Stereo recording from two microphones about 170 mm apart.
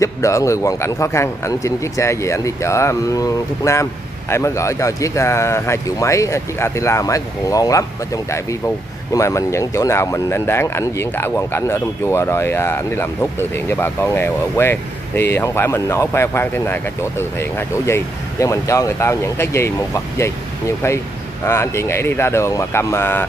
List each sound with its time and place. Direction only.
0.0 s speech: 20° left (ahead or behind)
21.5 s speech: 15° left (ahead or behind)